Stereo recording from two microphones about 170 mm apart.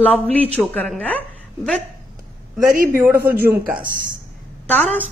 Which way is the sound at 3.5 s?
55° right (ahead or behind).